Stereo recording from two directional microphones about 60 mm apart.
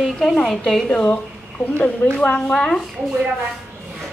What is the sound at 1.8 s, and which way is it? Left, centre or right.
A woman's voice, left.